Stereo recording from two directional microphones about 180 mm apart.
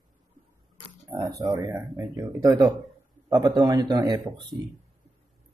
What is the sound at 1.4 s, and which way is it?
Speech, 15° right (ahead or behind).